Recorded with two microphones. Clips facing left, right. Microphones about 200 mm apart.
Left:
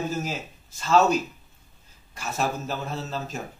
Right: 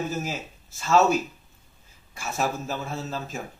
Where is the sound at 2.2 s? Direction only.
Centre (ahead or behind).